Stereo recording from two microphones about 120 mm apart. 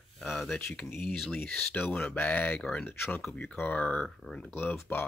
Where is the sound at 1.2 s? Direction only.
5° left (ahead or behind).